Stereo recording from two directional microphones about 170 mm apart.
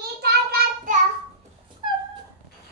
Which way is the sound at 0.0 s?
70° right (ahead or behind).